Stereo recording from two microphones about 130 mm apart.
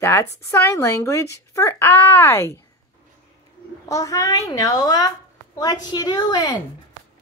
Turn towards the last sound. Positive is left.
turn(degrees=30)  # may be behind; listen again after turning